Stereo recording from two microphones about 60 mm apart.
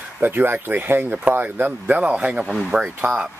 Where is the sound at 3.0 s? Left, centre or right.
Right.